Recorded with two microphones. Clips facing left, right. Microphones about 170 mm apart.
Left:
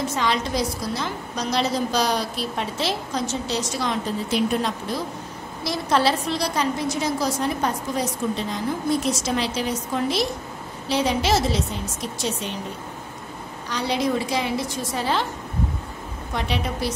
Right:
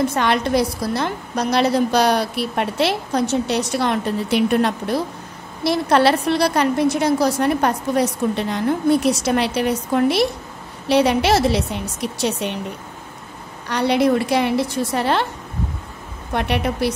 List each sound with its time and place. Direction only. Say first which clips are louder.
0.0 s a woman's voice: right 5 dB; 60° right (ahead or behind)
13.7 s a woman's voice: right 7 dB; 60° right (ahead or behind)
16.3 s a woman's voice: right 6 dB; 60° right (ahead or behind)